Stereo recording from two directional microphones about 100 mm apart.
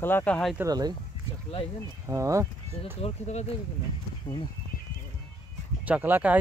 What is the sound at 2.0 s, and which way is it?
Speech, 30° right (ahead or behind).